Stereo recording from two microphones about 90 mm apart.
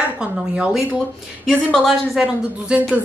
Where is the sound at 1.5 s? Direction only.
10° left (ahead or behind).